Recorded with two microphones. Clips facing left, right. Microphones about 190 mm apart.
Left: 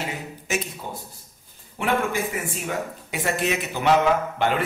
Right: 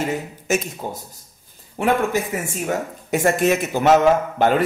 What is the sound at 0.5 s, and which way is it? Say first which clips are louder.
Speech: right 6 dB; 45° right (ahead or behind).